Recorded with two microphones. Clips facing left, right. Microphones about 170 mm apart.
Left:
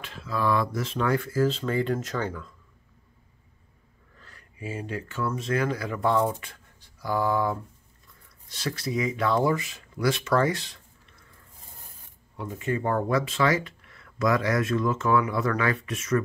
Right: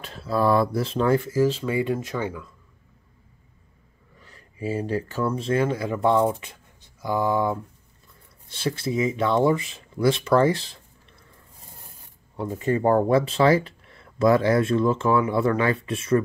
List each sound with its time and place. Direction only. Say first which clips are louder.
0.0 s speech: right 5 dB; 35° right (ahead or behind)
1.3 s speech: right 3 dB; 10° right (ahead or behind)
4.2 s a sound: right 2 dB; 20° right (ahead or behind)
4.6 s speech: right 7 dB; 35° right (ahead or behind)
12.4 s speech: right 5 dB; 35° right (ahead or behind)